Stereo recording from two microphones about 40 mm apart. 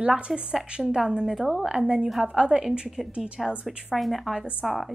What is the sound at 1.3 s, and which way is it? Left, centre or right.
Speech, centre.